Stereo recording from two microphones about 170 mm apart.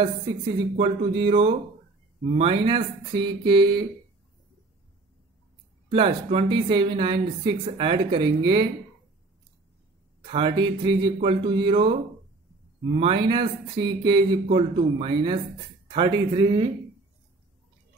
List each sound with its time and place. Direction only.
0.7 s speech: 30° right (ahead or behind)
5.9 s speech: 35° right (ahead or behind)
10.2 s speech: 30° right (ahead or behind)